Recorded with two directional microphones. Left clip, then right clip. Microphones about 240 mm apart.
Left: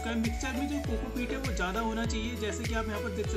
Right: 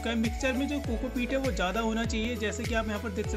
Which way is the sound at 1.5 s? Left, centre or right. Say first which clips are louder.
Right 2 dB; right.